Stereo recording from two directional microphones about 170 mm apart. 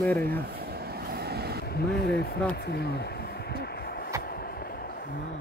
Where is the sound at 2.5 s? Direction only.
75° left (ahead or behind).